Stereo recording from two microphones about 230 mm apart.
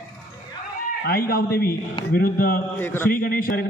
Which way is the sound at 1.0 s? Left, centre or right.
Left.